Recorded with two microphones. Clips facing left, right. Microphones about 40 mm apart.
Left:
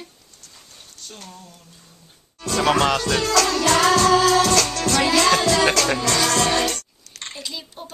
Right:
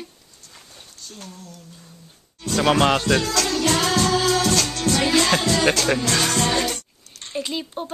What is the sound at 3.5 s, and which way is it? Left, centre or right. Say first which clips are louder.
Music: left 2 dB; left.